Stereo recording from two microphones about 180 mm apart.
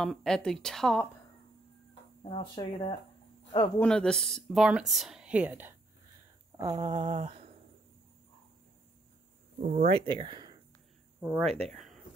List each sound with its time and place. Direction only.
0.0 s speech: centre (ahead or behind)
2.2 s speech: 30° left (ahead or behind)
3.8 s speech: 5° left (ahead or behind); by 5.8 s 10° right (ahead or behind)
6.5 s a sound: 20° right (ahead or behind)
9.6 s speech: 40° right (ahead or behind)
11.1 s speech: 10° right (ahead or behind)
11.7 s a sound: centre (ahead or behind)